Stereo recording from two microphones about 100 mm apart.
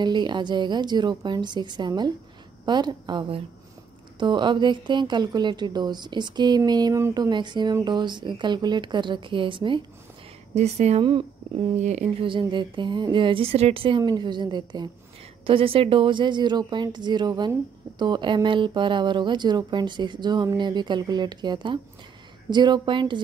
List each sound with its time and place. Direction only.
0.0 s a woman's voice: 50° right (ahead or behind)
10.5 s a woman's voice: 90° right
11.1 s speech: 60° right (ahead or behind)
14.0 s a woman's voice: 45° right (ahead or behind)
15.4 s a woman's voice: 65° right (ahead or behind)